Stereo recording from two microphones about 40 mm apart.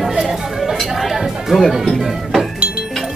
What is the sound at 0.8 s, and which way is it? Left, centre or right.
Music, centre.